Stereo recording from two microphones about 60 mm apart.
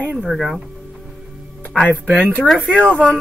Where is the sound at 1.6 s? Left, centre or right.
Left.